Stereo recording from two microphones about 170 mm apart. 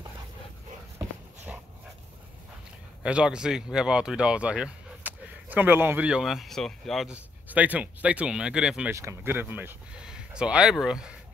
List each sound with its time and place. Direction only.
0.9 s dog: 10° right (ahead or behind)
3.0 s speech: 5° right (ahead or behind)
8.9 s speech: 15° right (ahead or behind)